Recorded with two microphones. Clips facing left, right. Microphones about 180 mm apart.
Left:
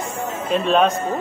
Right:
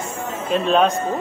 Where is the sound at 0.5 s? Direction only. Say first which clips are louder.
Even; 5° left (ahead or behind).